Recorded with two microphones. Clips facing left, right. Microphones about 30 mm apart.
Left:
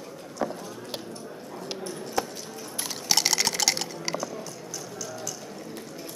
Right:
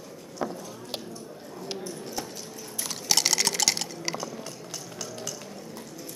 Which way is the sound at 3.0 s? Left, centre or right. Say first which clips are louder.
Even; centre.